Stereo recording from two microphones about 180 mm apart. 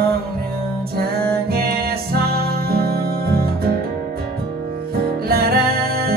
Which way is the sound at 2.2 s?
60° right (ahead or behind).